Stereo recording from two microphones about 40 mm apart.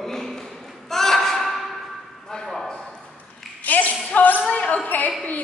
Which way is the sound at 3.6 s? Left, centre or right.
Left.